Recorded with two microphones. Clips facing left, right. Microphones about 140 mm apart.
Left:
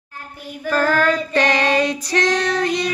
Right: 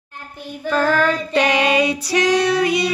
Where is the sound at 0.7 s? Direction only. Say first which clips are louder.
Even; centre (ahead or behind).